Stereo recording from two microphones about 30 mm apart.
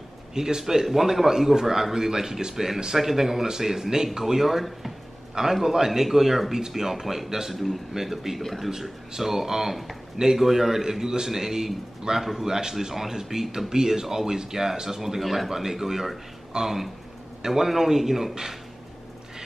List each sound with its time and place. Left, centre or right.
0.3 s speech: centre
4.5 s speech: centre
5.5 s speech: centre
7.5 s speech: centre
8.4 s speech: centre
9.1 s speech: centre
12.2 s speech: centre
12.4 s speech: right